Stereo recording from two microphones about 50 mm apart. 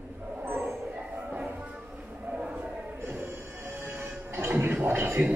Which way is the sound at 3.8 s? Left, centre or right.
Right.